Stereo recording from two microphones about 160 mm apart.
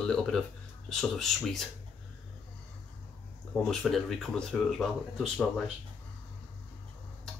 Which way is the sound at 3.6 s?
Centre (ahead or behind).